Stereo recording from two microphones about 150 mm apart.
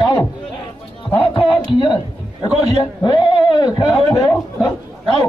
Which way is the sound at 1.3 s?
35° left (ahead or behind).